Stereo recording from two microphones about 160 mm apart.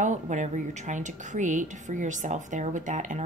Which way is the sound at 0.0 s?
50° right (ahead or behind).